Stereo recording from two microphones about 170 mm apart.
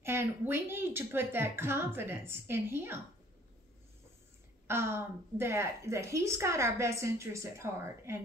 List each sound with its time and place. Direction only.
0.0 s a woman's voice: 15° right (ahead or behind)
4.6 s a woman's voice: 15° right (ahead or behind)